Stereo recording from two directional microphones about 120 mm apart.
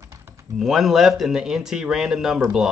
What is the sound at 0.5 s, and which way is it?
Speech, 5° right (ahead or behind).